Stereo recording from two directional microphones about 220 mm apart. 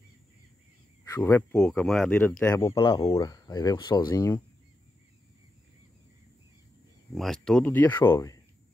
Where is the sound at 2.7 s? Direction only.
25° left (ahead or behind).